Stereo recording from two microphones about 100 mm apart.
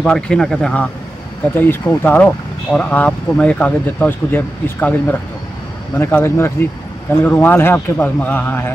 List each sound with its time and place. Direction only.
0.0 s speech: 5° left (ahead or behind)
1.5 s a man's voice: 20° left (ahead or behind)